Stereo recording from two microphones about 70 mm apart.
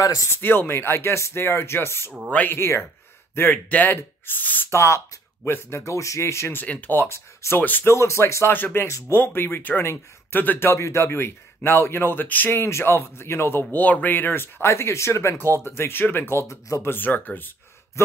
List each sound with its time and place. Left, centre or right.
0.0 s speech: left
0.3 s speech: left
4.6 s speech: left
6.6 s speech: left
8.5 s speech: left
16.8 s speech: left
18.0 s speech: left